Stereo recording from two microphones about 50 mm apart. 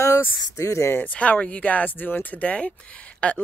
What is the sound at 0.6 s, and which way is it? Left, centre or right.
Speech, left.